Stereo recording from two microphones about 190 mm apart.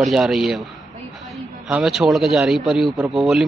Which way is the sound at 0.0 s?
Centre (ahead or behind).